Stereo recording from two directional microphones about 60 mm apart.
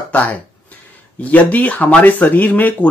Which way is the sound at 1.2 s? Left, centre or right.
Left.